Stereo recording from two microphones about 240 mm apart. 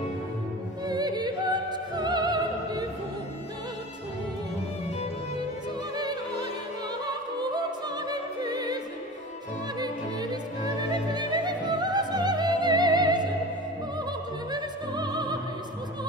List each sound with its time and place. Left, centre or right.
0.8 s opera: centre
5.9 s opera: centre
8.1 s opera: centre
10.9 s opera: centre
14.5 s opera: centre